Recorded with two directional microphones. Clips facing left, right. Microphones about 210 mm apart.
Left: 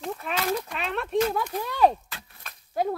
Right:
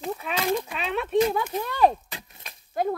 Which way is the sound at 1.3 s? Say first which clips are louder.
Right 1 dB; centre (ahead or behind).